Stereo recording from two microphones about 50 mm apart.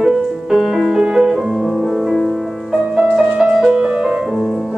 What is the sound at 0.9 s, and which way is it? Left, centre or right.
Music, centre.